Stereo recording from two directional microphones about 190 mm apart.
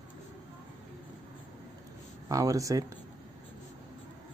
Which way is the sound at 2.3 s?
20° right (ahead or behind).